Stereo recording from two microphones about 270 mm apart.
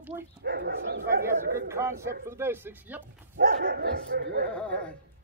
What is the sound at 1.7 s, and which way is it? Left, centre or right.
Speech, centre.